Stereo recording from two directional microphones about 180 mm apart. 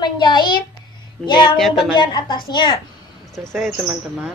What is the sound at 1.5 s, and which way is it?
Speech, centre (ahead or behind).